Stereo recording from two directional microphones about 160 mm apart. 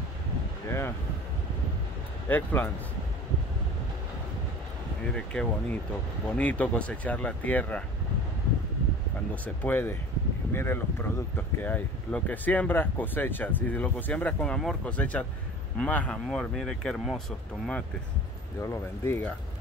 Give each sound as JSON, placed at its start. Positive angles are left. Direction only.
{"t": 0.7, "sound": "boat", "side_deg": 15}
{"t": 2.2, "sound": "speech", "side_deg": 10}
{"t": 5.0, "sound": "speech", "side_deg": 5}
{"t": 9.3, "sound": "speech", "side_deg": 10}
{"t": 18.6, "sound": "speech", "side_deg": 15}